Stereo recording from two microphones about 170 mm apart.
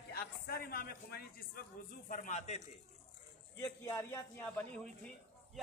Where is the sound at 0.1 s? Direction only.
65° left (ahead or behind); by 2.6 s 40° left (ahead or behind).